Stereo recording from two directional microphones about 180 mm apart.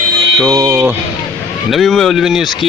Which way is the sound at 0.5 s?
15° right (ahead or behind).